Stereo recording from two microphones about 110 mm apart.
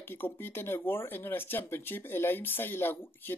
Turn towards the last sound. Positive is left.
turn(degrees=20)  # may be behind; listen again after turning